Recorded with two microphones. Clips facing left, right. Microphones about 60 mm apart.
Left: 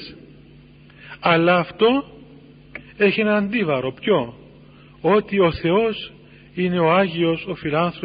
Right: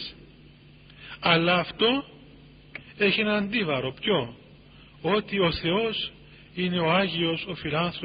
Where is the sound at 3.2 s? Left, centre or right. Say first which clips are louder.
Left 7 dB; centre.